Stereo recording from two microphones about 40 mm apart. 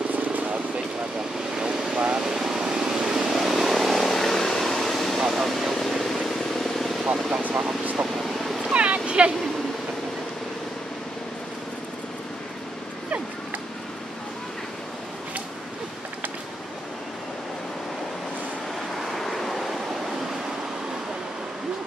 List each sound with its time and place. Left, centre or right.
0.1 s vehicle: right
2.0 s vehicle: right
2.2 s vehicle: centre
3.3 s vehicle: centre
8.2 s cat: centre
8.7 s a sound: right
18.9 s waves: centre